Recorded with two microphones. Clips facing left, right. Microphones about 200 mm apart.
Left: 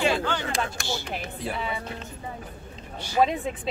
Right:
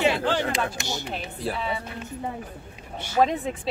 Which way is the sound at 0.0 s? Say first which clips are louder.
Right 2 dB; 25° right (ahead or behind).